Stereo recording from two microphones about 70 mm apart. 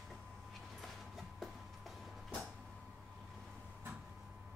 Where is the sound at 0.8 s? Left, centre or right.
Centre.